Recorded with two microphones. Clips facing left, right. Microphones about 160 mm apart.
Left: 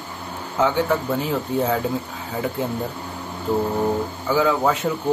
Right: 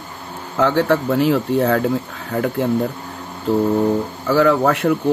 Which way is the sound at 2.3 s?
60° right (ahead or behind).